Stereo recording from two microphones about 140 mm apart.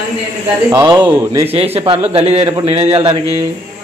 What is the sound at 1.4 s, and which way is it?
Speech, 45° right (ahead or behind).